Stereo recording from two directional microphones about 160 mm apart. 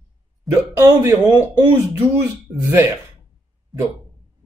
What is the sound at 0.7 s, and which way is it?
Speech, 15° right (ahead or behind).